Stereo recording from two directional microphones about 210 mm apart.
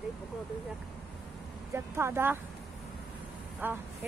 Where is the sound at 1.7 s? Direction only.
10° right (ahead or behind).